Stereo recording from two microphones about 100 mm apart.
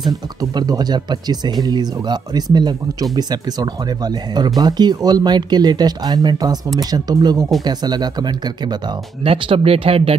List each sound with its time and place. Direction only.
0.6 s speech: 40° right (ahead or behind)
9.2 s speech: 65° right (ahead or behind)